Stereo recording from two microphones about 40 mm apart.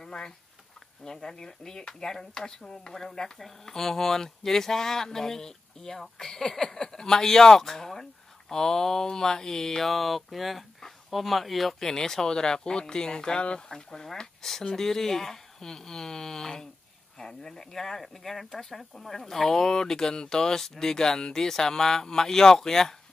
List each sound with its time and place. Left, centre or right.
0.0 s a sound: centre
1.0 s speech: centre
11.9 s speech: centre